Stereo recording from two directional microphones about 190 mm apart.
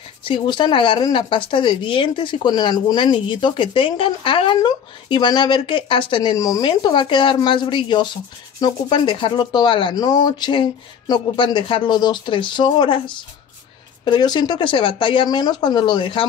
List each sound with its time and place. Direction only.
0.2 s speech: 25° left (ahead or behind)
14.0 s speech: 25° left (ahead or behind)